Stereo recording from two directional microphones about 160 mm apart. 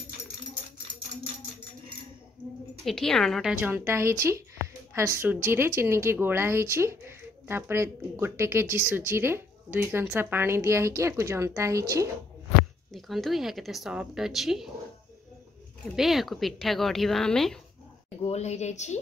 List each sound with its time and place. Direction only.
2.8 s speech: centre (ahead or behind)
3.6 s speech: 15° right (ahead or behind)
12.9 s speech: centre (ahead or behind)
16.0 s speech: centre (ahead or behind)
18.3 s a woman's voice: 45° left (ahead or behind)